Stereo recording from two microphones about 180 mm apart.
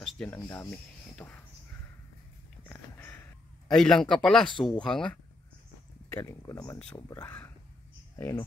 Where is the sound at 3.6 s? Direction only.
Centre (ahead or behind).